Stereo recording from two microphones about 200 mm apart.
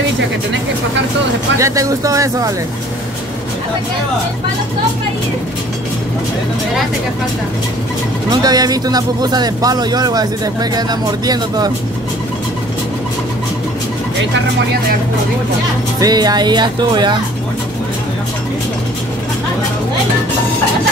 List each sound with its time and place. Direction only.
1.6 s speech: 15° right (ahead or behind)
8.3 s speech: 20° right (ahead or behind)
16.0 s speech: 20° right (ahead or behind)